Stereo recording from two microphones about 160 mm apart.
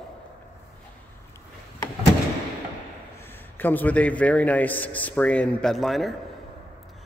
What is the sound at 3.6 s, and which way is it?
A man's voice, 10° left (ahead or behind).